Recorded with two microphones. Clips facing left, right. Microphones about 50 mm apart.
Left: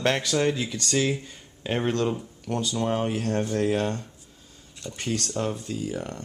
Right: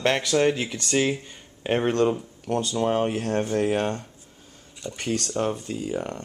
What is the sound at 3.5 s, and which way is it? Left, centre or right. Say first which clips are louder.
Speech: right 1 dB; centre.